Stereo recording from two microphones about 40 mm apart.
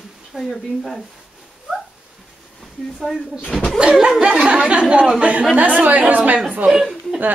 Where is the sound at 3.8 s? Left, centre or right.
Right.